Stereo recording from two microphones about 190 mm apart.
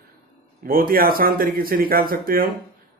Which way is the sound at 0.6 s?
50° right (ahead or behind).